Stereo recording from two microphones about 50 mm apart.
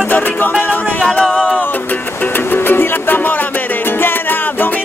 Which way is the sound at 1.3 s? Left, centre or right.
Centre.